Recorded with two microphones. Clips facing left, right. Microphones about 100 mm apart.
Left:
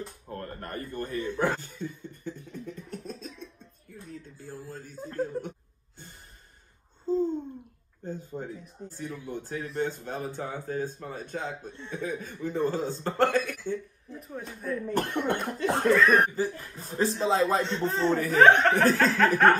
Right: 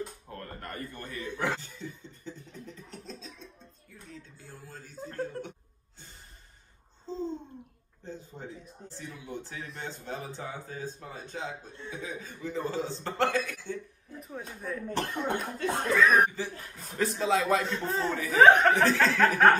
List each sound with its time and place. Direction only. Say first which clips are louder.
0.3 s speech: left 4 dB; 35° left (ahead or behind)
4.9 s speech: left 4 dB; 5° left (ahead or behind)
7.1 s a sound: left 8 dB; 10° left (ahead or behind)
8.0 s speech: left 6 dB; 45° left (ahead or behind)
11.7 s speech: left 3 dB; centre (ahead or behind)
12.0 s speech: left 7 dB; 50° left (ahead or behind)
14.2 s speech: left 2 dB; centre (ahead or behind)
15.0 s speech: left 3 dB; 60° left (ahead or behind)
15.9 s speech: left 1 dB; centre (ahead or behind)
16.3 s speech: left 6 dB; 35° left (ahead or behind)
17.8 s speech: left 5 dB; 5° right (ahead or behind)
18.8 s speech: left 2 dB; 45° left (ahead or behind)
19.1 s speech: right 1 dB; centre (ahead or behind)